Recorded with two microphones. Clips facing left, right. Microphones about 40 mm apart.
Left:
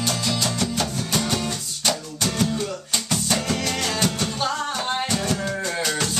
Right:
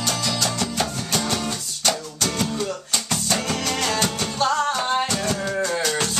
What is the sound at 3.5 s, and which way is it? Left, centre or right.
Music, centre.